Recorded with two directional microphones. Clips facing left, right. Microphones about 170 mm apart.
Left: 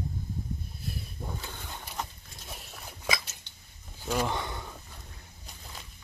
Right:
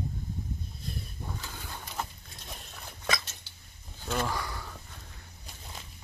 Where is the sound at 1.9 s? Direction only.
Centre (ahead or behind).